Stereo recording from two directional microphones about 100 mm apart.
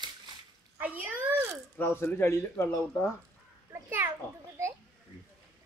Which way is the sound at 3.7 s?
20° right (ahead or behind).